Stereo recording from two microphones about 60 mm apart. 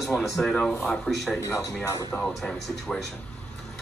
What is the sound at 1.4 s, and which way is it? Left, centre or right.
Speech, left.